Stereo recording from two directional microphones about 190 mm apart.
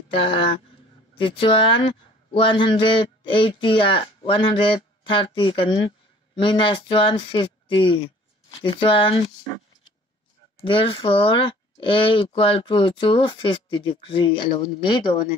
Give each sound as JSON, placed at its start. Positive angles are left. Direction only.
{"t": 0.1, "sound": "speech", "side_deg": 30}
{"t": 10.6, "sound": "speech", "side_deg": 30}